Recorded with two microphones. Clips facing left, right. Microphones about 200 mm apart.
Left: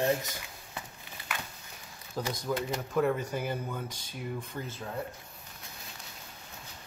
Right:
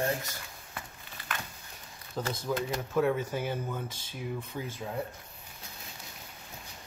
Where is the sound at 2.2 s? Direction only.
5° left (ahead or behind).